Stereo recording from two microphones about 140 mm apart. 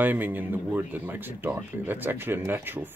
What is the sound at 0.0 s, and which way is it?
Speech, 15° right (ahead or behind).